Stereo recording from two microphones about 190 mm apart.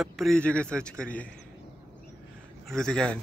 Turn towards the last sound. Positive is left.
turn(degrees=5)  # may be behind; listen again after turning